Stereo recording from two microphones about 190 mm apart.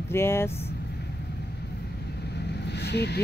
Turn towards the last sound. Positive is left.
turn(degrees=60)  # may be behind; listen again after turning